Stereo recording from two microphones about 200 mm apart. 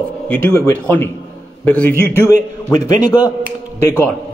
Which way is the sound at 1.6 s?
10° left (ahead or behind).